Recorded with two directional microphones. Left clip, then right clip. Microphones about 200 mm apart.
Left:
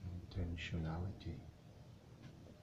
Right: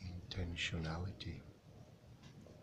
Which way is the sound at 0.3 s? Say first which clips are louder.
Right 6 dB; 5° right (ahead or behind).